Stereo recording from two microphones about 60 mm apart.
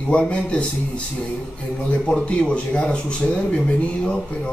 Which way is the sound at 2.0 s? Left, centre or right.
Centre.